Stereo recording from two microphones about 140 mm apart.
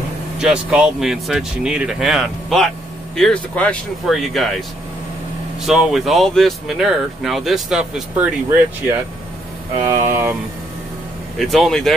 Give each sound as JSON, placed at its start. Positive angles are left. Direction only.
{"t": 0.4, "sound": "speech", "side_deg": -5}
{"t": 9.9, "sound": "speech", "side_deg": -15}
{"t": 11.3, "sound": "speech", "side_deg": 0}